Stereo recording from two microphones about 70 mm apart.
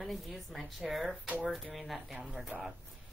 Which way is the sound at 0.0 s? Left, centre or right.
Centre.